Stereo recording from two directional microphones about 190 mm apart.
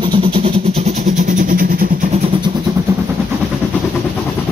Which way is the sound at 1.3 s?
45° right (ahead or behind).